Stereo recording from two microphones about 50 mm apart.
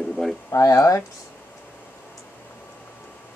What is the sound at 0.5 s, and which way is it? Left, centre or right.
Speech, left.